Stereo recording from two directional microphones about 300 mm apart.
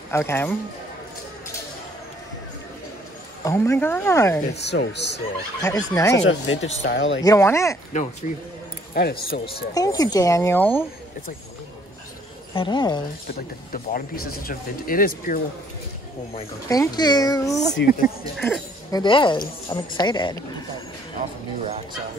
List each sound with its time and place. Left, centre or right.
0.1 s a woman's voice: centre
3.4 s a woman's voice: centre
4.6 s speech: left
5.6 s a woman's voice: centre
6.1 s speech: left
7.2 s a woman's voice: centre
7.9 s speech: left
9.8 s a woman's voice: centre
12.5 s a woman's voice: centre
14.1 s speech: left
14.4 s speech: left
16.3 s a woman's voice: centre
17.8 s speech: left
18.4 s a woman's voice: centre